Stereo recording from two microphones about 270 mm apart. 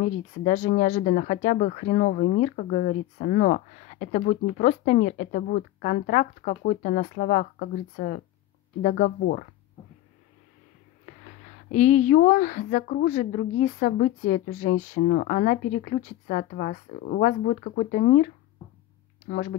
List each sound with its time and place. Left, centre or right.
0.0 s speech: left
11.7 s speech: left